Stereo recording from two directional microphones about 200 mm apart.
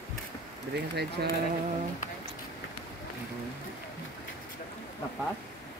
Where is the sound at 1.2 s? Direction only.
55° right (ahead or behind).